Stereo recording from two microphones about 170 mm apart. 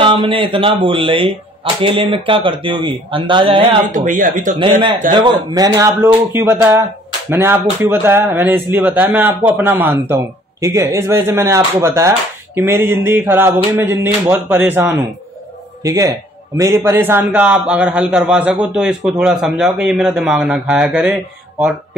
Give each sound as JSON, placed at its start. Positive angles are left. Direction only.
{"t": 0.0, "sound": "speech", "side_deg": -30}
{"t": 3.8, "sound": "speech", "side_deg": -50}
{"t": 5.2, "sound": "a man's voice", "side_deg": -25}